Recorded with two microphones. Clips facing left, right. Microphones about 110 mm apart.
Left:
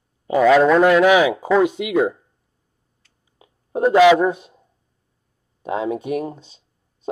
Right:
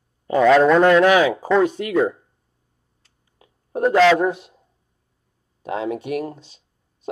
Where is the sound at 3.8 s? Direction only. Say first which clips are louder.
Left 3 dB; 15° left (ahead or behind).